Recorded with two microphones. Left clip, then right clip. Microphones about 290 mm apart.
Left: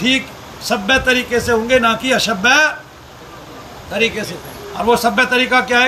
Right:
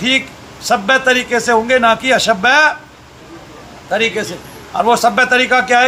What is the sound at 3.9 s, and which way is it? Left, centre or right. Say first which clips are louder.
A man's voice: right 2 dB; centre.